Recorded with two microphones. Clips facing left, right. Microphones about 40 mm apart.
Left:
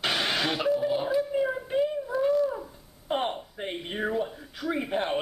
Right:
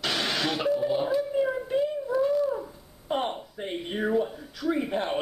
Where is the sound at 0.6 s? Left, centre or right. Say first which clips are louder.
Even; centre.